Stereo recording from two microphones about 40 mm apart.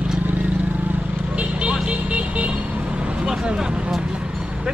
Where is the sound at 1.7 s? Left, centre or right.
Right.